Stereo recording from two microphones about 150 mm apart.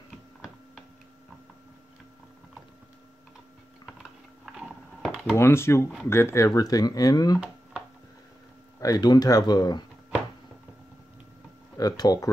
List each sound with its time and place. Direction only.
4.5 s a sound: centre (ahead or behind)
5.3 s speech: 15° left (ahead or behind)
8.7 s speech: 25° left (ahead or behind)
11.7 s speech: 25° left (ahead or behind)